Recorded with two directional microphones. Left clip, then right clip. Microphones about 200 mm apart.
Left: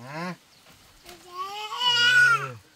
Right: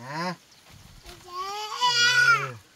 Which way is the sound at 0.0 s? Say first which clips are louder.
Right 3 dB; 20° right (ahead or behind).